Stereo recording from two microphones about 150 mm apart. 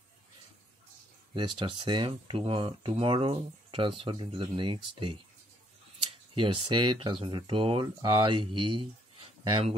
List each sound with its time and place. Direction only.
1.3 s speech: 30° right (ahead or behind)
6.3 s speech: 35° right (ahead or behind)